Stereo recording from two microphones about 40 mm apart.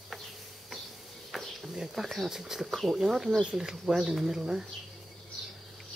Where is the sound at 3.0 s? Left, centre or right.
Centre.